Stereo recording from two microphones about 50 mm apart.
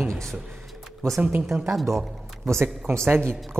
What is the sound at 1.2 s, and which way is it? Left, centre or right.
Speech, right.